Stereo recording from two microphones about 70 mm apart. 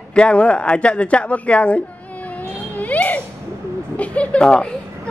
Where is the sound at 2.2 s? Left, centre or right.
Left.